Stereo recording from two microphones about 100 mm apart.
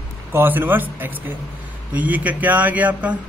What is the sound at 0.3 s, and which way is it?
A man's voice, 20° right (ahead or behind).